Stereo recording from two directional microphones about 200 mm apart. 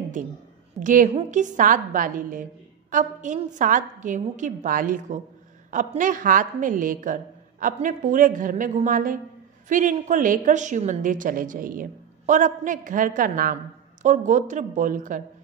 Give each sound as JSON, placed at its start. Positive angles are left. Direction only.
{"t": 0.7, "sound": "a woman's voice", "side_deg": -40}